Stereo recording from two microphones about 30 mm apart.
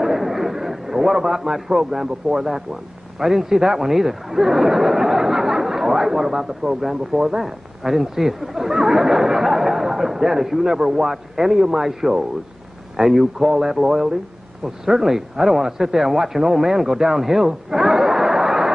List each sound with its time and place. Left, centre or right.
0.0 s a sound: centre
3.2 s speech: centre
14.6 s speech: centre